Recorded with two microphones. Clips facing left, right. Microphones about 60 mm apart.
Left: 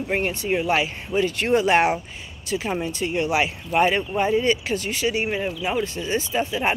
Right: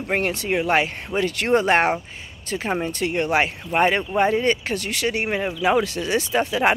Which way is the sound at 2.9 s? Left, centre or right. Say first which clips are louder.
Right 1 dB; right.